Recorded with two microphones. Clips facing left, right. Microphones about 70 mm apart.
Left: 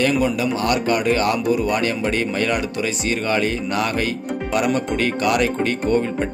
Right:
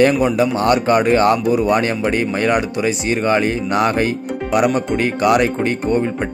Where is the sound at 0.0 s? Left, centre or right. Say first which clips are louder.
Right 5 dB; right.